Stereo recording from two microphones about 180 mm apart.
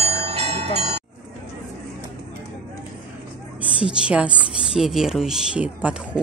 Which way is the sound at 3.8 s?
5° right (ahead or behind).